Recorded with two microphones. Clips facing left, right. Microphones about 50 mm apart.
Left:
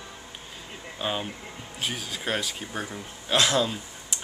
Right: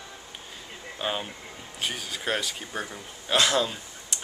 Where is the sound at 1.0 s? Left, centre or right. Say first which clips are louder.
Left 1 dB; centre.